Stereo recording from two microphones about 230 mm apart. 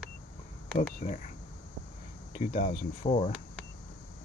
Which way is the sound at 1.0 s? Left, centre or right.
Left.